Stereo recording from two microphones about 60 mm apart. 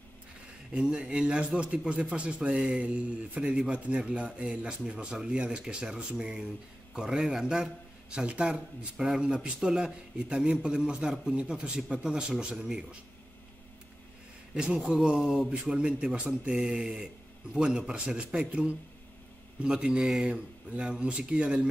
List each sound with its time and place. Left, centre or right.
0.7 s a man's voice: centre
14.5 s speech: centre